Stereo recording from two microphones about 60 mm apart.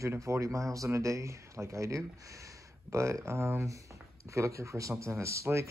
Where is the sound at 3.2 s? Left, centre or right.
Right.